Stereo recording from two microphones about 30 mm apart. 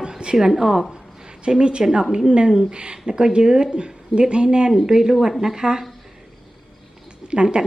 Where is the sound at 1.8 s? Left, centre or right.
Centre.